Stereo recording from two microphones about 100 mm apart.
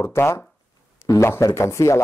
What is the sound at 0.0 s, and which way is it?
A man's voice, 25° left (ahead or behind).